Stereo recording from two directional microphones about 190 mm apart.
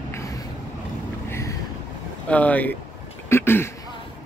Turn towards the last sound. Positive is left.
turn(degrees=10)  # may be behind; listen again after turning